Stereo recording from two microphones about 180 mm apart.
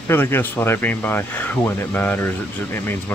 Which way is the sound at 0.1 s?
10° left (ahead or behind).